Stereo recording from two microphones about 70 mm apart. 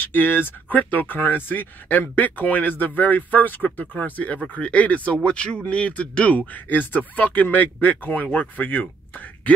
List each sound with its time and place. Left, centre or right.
0.0 s speech: left